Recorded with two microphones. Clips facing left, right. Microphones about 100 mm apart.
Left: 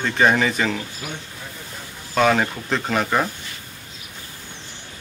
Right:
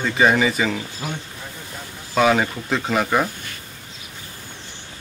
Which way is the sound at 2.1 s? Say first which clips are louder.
Right 1 dB; 5° right (ahead or behind).